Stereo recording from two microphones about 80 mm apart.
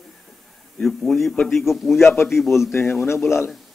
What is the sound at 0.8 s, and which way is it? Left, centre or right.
A man's voice, centre.